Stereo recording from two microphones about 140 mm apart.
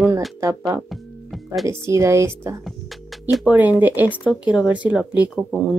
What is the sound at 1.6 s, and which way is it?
Speech, 20° right (ahead or behind).